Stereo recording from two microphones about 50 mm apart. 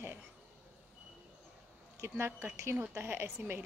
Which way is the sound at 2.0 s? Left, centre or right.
Right.